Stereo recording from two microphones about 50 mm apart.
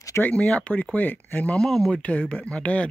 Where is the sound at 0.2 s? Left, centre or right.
Left.